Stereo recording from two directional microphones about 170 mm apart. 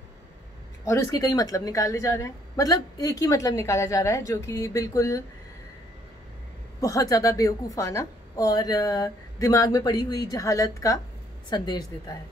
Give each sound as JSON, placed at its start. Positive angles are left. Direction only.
{"t": 0.8, "sound": "a woman's voice", "side_deg": 20}
{"t": 6.8, "sound": "a woman's voice", "side_deg": 20}